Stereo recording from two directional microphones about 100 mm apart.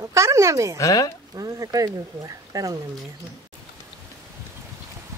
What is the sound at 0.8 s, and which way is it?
Speech, 35° left (ahead or behind).